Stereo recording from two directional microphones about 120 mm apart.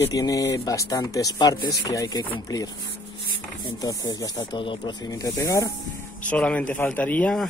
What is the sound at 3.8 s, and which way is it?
Speech, 30° left (ahead or behind).